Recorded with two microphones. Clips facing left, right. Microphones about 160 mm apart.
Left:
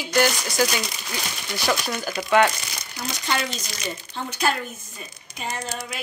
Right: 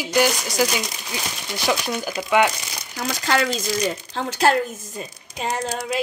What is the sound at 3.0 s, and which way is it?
Speech, 90° right.